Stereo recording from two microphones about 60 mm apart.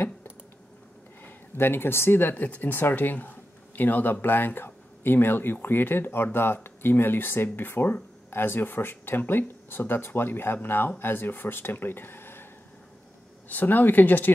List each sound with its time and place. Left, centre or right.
1.2 s speech: left
13.5 s speech: left